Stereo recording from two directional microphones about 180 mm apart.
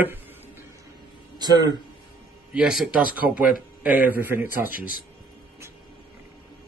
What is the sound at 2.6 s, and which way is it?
A man's voice, 5° right (ahead or behind).